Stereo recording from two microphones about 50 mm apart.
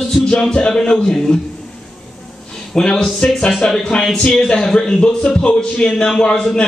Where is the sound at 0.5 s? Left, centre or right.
Centre.